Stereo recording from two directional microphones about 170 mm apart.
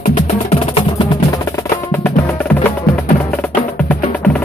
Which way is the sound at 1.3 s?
20° left (ahead or behind).